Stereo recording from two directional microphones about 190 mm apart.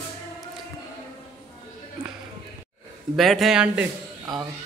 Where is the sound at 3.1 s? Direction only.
Centre (ahead or behind).